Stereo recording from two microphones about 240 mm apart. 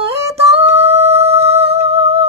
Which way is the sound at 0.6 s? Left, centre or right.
Right.